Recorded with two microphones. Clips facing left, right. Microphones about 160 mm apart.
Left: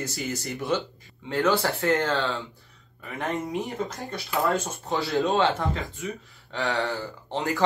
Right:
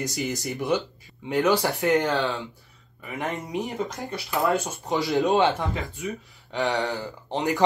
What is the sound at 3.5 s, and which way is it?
Speech, 15° right (ahead or behind).